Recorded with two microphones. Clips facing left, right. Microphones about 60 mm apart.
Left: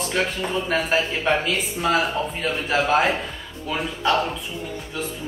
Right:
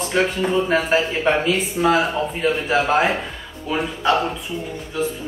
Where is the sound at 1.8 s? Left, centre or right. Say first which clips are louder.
Right 3 dB; centre.